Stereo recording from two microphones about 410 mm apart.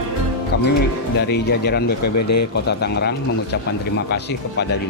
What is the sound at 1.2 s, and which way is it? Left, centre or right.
Speech, left.